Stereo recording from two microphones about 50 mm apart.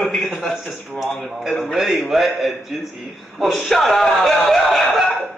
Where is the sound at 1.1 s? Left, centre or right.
Centre.